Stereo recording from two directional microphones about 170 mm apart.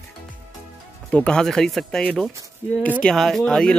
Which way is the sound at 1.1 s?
5° left (ahead or behind).